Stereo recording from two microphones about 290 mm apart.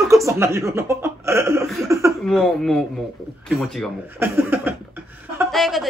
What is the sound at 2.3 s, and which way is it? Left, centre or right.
A woman's voice, centre.